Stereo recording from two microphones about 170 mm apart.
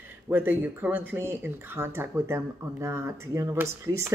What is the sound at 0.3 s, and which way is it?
Speech, 10° right (ahead or behind).